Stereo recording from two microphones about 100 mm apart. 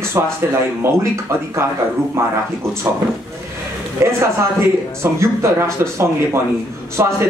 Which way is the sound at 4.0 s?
30° right (ahead or behind).